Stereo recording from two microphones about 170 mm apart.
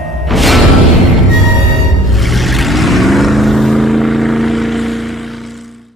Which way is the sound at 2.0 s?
Centre (ahead or behind).